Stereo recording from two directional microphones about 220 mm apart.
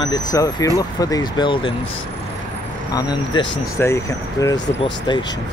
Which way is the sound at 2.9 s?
15° left (ahead or behind).